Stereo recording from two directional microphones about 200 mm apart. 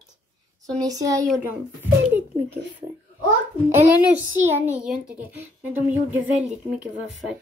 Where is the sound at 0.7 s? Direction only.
20° right (ahead or behind).